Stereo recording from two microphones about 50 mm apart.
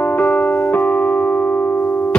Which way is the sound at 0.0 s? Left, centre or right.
Left.